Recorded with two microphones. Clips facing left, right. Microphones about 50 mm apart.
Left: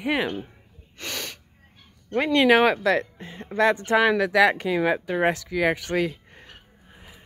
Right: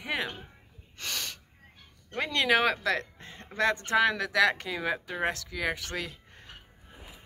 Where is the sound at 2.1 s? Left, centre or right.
Left.